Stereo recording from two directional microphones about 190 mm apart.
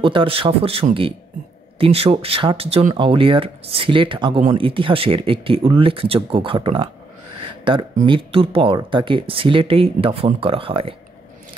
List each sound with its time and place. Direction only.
0.0 s speech: 25° right (ahead or behind)